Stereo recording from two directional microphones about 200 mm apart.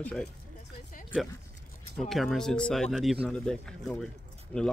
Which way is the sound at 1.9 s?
Centre (ahead or behind).